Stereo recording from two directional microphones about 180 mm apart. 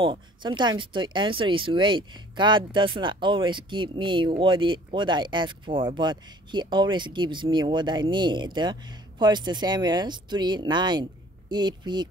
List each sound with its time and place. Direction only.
0.0 s speech: 25° right (ahead or behind)